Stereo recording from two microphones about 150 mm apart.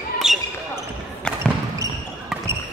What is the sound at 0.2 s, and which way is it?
Basketball bounce, 5° right (ahead or behind).